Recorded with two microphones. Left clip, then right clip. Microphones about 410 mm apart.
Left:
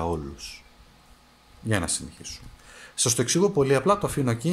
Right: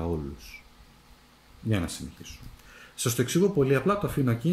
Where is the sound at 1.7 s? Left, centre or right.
Centre.